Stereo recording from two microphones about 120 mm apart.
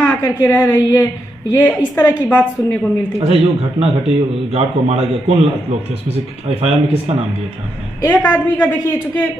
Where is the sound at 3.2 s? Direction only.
60° right (ahead or behind).